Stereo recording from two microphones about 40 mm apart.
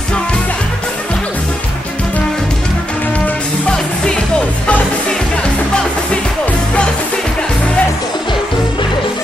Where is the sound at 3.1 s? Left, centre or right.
Left.